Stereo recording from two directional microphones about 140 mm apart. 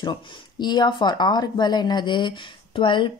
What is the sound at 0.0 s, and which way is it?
Speech, 35° left (ahead or behind).